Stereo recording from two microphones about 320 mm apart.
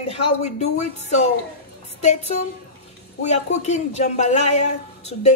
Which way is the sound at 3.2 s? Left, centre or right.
Left.